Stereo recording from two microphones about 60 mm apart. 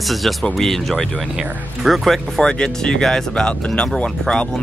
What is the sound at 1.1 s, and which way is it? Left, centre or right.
Speech, centre.